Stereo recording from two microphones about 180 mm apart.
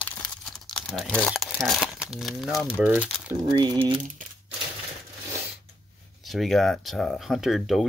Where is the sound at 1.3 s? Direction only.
Centre (ahead or behind).